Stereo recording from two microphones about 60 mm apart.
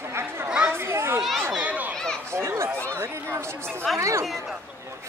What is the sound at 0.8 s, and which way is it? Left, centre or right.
Children playing, right.